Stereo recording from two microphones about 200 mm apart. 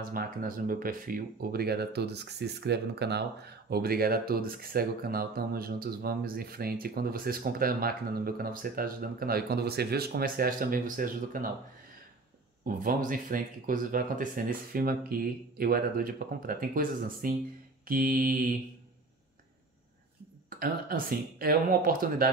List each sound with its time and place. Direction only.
0.0 s speech: 45° right (ahead or behind)
12.6 s speech: 45° right (ahead or behind)
20.4 s speech: 45° right (ahead or behind)